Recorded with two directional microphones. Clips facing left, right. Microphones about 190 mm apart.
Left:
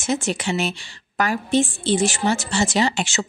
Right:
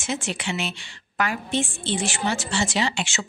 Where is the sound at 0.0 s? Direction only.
45° left (ahead or behind).